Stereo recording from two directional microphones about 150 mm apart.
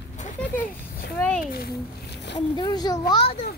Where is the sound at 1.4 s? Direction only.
85° left.